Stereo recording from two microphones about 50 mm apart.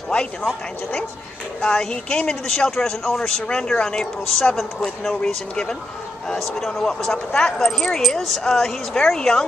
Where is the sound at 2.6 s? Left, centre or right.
Centre.